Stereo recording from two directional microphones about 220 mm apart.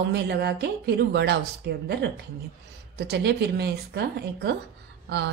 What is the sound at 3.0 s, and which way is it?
A woman's voice, 50° right (ahead or behind).